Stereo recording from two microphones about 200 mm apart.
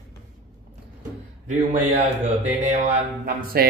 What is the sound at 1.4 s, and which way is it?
Speech, 35° right (ahead or behind).